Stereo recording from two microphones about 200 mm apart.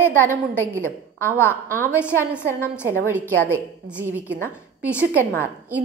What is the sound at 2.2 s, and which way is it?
A woman's voice, 10° left (ahead or behind).